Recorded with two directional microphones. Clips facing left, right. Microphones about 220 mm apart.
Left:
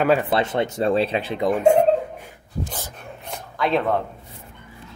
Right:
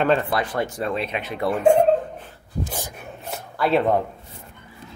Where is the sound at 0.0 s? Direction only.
10° left (ahead or behind).